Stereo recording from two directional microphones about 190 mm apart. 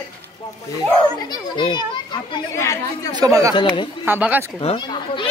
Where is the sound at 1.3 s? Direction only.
25° left (ahead or behind).